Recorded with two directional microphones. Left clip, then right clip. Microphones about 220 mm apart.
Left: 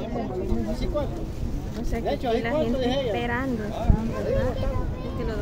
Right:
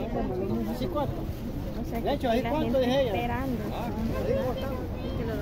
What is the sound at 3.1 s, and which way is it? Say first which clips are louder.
Speech: left 3 dB; 20° left (ahead or behind).